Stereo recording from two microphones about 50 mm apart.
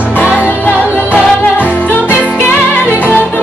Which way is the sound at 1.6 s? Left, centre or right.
Left.